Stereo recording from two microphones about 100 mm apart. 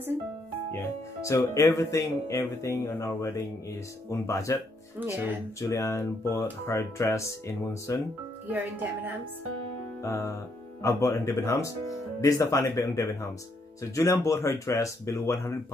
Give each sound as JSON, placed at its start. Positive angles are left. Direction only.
{"t": 1.2, "sound": "speech", "side_deg": 35}
{"t": 5.0, "sound": "speech", "side_deg": -20}
{"t": 5.6, "sound": "speech", "side_deg": 30}
{"t": 8.5, "sound": "speech", "side_deg": -15}
{"t": 10.0, "sound": "speech", "side_deg": 30}